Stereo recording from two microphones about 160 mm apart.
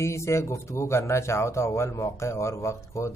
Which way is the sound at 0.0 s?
15° left (ahead or behind).